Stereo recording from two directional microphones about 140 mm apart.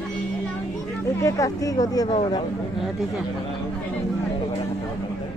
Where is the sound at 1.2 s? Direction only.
25° left (ahead or behind).